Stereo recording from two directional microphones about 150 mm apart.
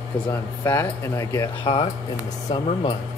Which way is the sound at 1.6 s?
40° left (ahead or behind).